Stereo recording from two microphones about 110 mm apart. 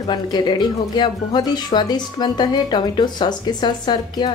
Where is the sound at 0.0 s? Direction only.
45° left (ahead or behind).